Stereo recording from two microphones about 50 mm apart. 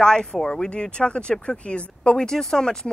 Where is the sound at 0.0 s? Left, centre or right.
Centre.